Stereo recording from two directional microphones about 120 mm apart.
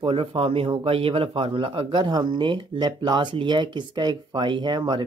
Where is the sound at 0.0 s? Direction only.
50° right (ahead or behind).